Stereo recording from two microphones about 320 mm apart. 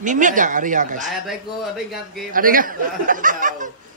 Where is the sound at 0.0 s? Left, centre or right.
Right.